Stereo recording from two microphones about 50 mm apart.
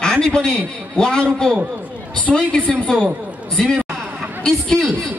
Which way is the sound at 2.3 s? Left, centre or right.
Centre.